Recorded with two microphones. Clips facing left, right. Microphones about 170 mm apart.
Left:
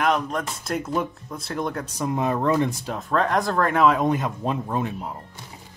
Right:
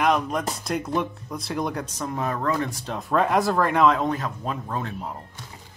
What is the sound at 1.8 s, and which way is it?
Speech, 15° left (ahead or behind).